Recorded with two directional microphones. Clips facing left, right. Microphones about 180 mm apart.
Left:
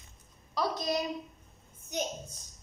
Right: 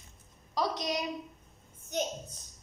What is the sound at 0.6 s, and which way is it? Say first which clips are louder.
Speech: left 1 dB; 15° right (ahead or behind).